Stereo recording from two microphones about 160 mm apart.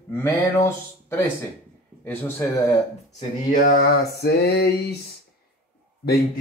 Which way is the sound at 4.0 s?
90° left.